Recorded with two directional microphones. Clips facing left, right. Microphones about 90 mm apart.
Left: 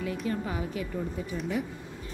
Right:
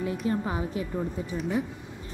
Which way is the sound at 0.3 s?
30° right (ahead or behind).